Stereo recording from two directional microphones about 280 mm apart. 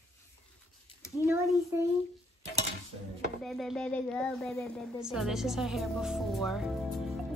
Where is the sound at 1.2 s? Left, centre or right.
Centre.